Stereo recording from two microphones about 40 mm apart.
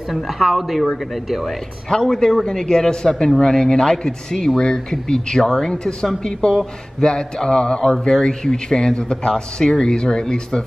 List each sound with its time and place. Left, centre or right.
0.1 s a woman's voice: centre
1.9 s speech: centre
5.7 s a sound: centre
8.0 s speech: centre